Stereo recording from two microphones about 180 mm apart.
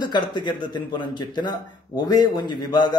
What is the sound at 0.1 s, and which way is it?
Speech, 25° left (ahead or behind).